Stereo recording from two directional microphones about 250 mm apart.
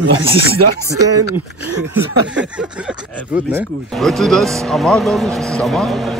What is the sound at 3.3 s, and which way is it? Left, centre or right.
Speech, centre.